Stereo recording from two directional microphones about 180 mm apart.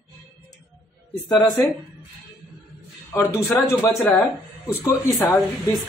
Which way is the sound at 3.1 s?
15° left (ahead or behind).